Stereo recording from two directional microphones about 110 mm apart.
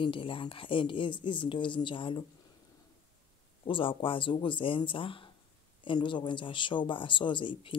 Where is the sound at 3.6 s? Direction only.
50° left (ahead or behind).